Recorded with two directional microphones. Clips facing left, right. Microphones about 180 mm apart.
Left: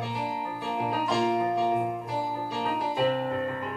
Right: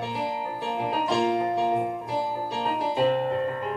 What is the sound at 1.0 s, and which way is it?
Piano, 25° right (ahead or behind).